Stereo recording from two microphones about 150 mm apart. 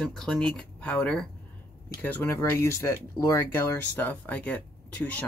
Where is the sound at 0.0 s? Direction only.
5° left (ahead or behind).